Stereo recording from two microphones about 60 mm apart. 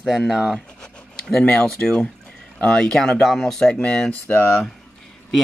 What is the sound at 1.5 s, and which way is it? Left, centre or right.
Speech, centre.